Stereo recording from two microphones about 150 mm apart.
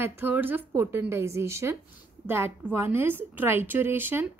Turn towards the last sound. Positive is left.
turn(degrees=-15)  # may be behind; listen again after turning